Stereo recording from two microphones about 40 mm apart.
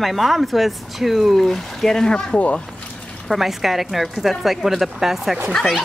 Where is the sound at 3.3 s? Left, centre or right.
Centre.